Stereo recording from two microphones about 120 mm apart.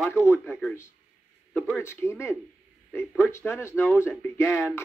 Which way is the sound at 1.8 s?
20° left (ahead or behind).